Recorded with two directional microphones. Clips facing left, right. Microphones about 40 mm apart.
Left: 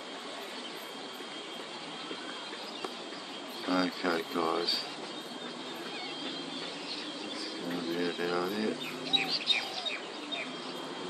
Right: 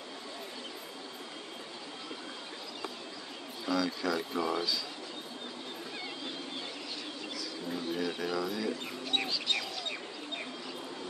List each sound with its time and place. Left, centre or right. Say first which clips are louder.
3.6 s speech: left 1 dB; centre
7.7 s bird: left 1 dB; centre